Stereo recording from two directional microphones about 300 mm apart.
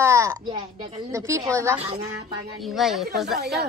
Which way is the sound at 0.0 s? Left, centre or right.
Centre.